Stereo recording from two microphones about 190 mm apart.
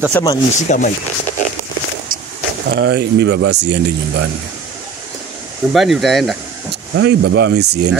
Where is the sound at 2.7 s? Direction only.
60° right (ahead or behind).